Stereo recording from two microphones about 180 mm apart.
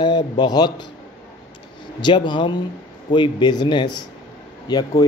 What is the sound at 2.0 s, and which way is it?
Speech, 25° left (ahead or behind).